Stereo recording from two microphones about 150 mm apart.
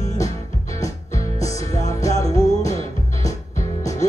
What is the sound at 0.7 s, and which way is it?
Music, 20° left (ahead or behind).